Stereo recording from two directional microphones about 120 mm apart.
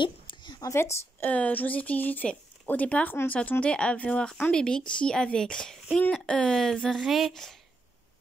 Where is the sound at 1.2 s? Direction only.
10° left (ahead or behind).